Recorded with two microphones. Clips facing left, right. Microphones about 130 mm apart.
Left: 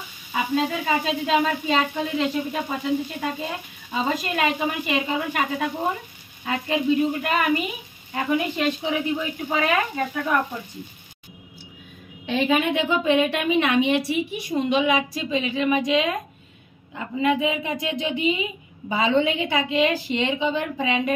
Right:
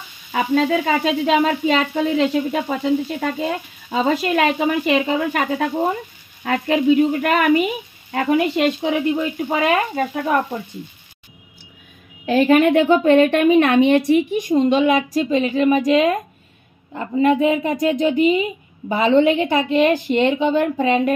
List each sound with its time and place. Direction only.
0.3 s sizzle: 55° right (ahead or behind)
6.4 s a woman's voice: 55° right (ahead or behind)
9.9 s speech: 35° right (ahead or behind)
12.3 s a woman's voice: centre (ahead or behind)
12.5 s a woman's voice: 55° right (ahead or behind)
13.8 s sizzle: 50° right (ahead or behind)